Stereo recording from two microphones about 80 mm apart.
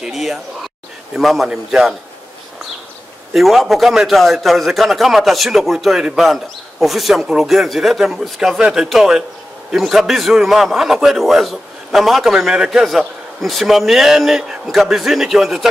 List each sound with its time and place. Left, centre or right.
0.0 s a sound: centre
1.1 s a man's voice: centre
3.3 s a man's voice: centre